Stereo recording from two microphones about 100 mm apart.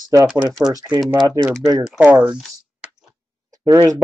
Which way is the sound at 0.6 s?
40° right (ahead or behind).